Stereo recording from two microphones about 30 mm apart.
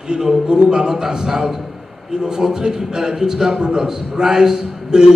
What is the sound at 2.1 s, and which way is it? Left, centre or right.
A man's voice, right.